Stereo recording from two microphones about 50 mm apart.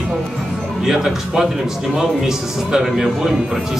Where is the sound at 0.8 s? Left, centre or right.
Centre.